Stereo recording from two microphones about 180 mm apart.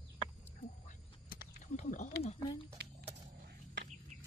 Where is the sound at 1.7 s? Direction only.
40° left (ahead or behind).